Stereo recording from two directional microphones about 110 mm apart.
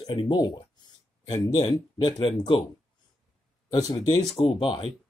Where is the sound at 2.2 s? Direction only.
50° left (ahead or behind).